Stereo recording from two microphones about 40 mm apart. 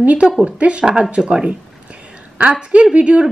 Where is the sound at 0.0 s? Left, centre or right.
Right.